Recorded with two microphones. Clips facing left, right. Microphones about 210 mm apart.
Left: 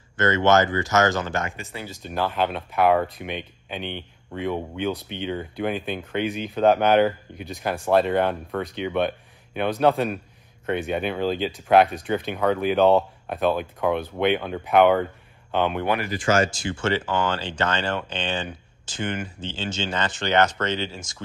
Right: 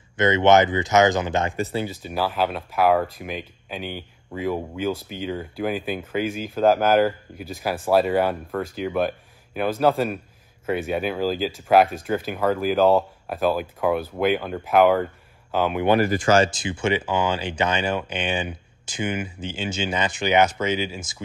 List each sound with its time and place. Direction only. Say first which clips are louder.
0.2 s speech: right 2 dB; 15° right (ahead or behind)
1.6 s speech: right 10 dB; 30° right (ahead or behind)
2.0 s speech: left 3 dB; 5° right (ahead or behind)
16.0 s speech: right 4 dB; 45° right (ahead or behind)
16.5 s speech: right 1 dB; 15° right (ahead or behind)